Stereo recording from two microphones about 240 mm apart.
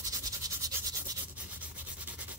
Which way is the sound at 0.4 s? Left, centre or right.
Centre.